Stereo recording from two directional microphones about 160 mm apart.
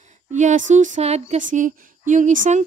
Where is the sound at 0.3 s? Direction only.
50° right (ahead or behind).